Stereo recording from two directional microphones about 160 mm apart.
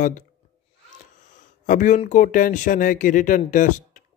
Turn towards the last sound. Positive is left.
turn(degrees=55)  # may be behind; listen again after turning